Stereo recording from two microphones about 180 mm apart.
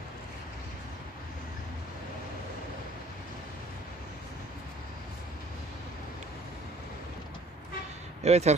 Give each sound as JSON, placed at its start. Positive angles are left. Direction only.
{"t": 8.2, "sound": "speech", "side_deg": -35}